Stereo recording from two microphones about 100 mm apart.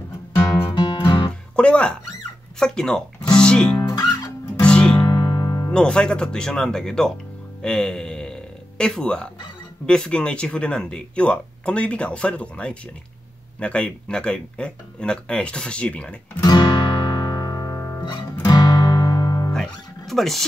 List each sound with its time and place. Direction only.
0.7 s music: 55° left (ahead or behind)
1.6 s a sound: 10° left (ahead or behind)
2.6 s speech: 5° left (ahead or behind)
3.3 s music: 10° left (ahead or behind)
3.7 s music: 35° left (ahead or behind)
4.6 s music: 10° left (ahead or behind)
5.0 s music: 40° left (ahead or behind)
5.7 s speech: 10° left (ahead or behind)
16.3 s music: 45° left (ahead or behind)
19.5 s music: 5° left (ahead or behind)